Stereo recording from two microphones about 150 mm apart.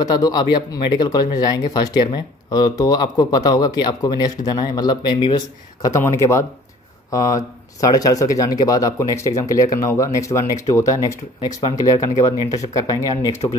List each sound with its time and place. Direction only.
0.0 s speech: 25° left (ahead or behind)